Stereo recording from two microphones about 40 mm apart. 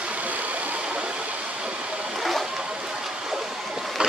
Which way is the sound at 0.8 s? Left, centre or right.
Right.